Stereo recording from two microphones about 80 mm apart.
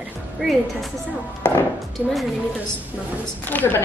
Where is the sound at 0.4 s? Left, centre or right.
Centre.